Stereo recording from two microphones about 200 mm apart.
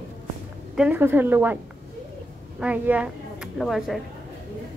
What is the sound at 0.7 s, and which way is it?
Speech, 10° right (ahead or behind).